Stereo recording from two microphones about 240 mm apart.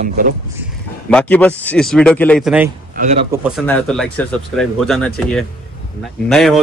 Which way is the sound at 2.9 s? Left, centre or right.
Right.